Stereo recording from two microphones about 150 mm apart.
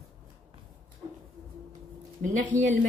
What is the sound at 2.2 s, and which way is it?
Speech, 60° right (ahead or behind).